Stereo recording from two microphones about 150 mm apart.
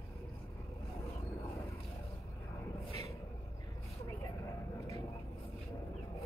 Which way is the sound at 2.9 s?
45° right (ahead or behind).